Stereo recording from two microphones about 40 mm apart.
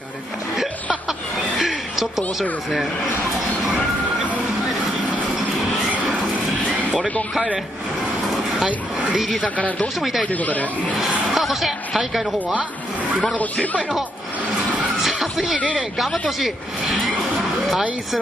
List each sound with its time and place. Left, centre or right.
1.6 s a sound: centre
8.5 s speech: right
9.4 s speech: left
9.9 s speech: centre
10.2 s speech: left
11.3 s speech: centre
13.2 s speech: left
15.1 s music: centre
16.3 s speech: centre